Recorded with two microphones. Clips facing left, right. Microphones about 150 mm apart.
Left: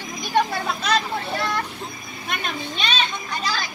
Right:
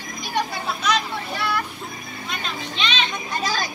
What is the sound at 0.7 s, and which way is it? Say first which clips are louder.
Vehicle: even; 55° left (ahead or behind).